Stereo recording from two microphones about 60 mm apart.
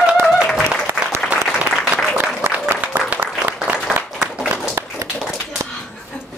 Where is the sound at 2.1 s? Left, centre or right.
Right.